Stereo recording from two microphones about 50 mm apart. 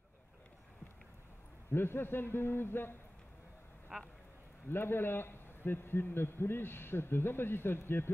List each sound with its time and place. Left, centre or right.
1.7 s a man's voice: left
3.9 s speech: centre
4.6 s a man's voice: left